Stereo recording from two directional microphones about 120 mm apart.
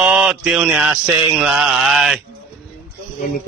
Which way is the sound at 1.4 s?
5° right (ahead or behind).